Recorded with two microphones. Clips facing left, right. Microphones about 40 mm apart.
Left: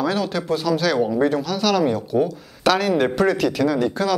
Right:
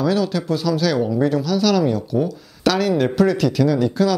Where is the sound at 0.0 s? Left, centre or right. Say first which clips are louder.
Right 3 dB; centre.